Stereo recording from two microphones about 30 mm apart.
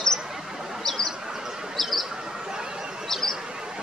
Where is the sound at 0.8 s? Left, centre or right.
Centre.